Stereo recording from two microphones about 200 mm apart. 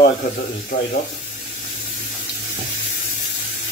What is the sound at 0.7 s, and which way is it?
Speech, 45° left (ahead or behind).